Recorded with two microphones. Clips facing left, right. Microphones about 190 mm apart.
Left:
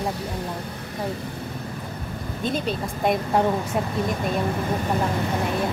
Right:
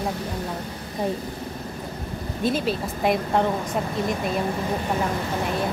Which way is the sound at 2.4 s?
5° right (ahead or behind).